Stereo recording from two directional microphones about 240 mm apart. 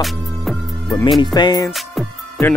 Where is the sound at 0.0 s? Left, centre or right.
Centre.